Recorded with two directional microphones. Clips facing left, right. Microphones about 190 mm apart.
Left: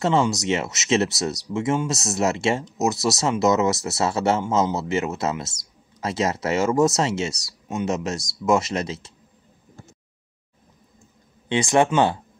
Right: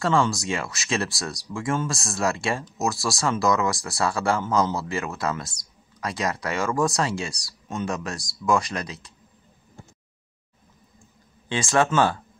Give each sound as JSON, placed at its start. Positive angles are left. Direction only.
{"t": 0.0, "sound": "speech", "side_deg": 20}
{"t": 11.4, "sound": "speech", "side_deg": 20}